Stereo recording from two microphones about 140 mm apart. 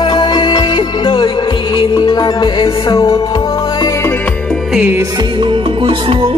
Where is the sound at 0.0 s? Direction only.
35° left (ahead or behind); by 4.9 s 5° right (ahead or behind).